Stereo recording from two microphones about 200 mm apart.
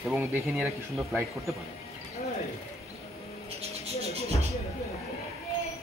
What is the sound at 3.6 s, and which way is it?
Bird, 30° right (ahead or behind).